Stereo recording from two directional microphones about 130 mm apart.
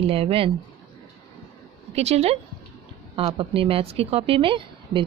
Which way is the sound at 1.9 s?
55° right (ahead or behind).